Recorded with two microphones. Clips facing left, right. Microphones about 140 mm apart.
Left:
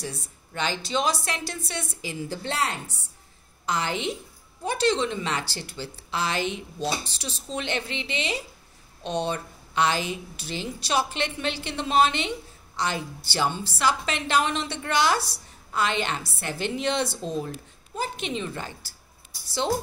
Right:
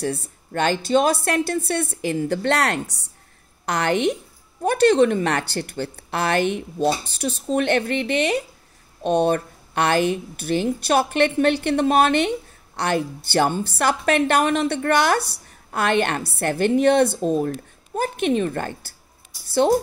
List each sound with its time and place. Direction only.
0.0 s a woman's voice: 55° right (ahead or behind)